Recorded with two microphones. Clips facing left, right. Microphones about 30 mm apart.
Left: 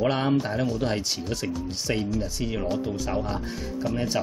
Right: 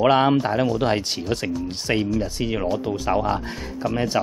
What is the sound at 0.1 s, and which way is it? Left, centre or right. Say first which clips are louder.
Speech: right 7 dB; right.